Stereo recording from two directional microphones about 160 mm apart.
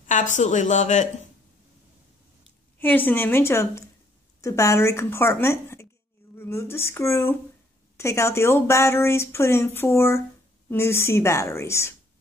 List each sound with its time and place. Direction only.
0.0 s a woman's voice: 50° left (ahead or behind)
2.8 s a woman's voice: 10° left (ahead or behind)